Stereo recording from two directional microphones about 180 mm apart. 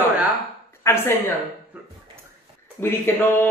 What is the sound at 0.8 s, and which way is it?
Speech, 15° left (ahead or behind).